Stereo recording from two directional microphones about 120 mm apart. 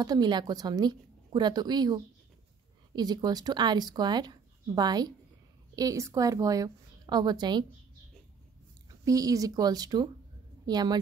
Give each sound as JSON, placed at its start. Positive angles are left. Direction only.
{"t": 0.0, "sound": "a woman's voice", "side_deg": -35}
{"t": 9.0, "sound": "speech", "side_deg": -30}